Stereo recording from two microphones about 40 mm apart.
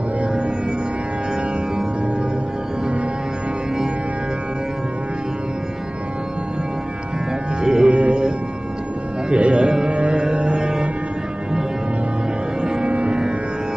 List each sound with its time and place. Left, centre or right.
7.6 s music: centre
9.3 s music: right
12.8 s music: right